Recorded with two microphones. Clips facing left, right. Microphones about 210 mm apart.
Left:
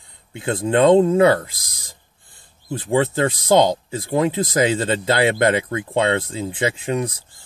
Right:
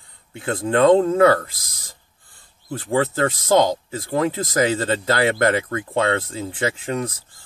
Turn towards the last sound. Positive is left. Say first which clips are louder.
# left 2 dB
turn(degrees=15)  # may be behind; listen again after turning